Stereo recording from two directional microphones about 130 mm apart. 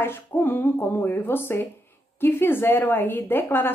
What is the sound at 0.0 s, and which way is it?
A woman's voice, 15° left (ahead or behind).